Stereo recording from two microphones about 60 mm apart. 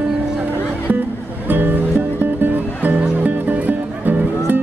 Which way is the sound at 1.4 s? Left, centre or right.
Right.